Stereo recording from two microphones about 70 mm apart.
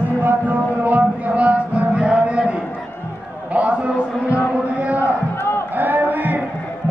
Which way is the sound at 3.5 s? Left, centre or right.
Centre.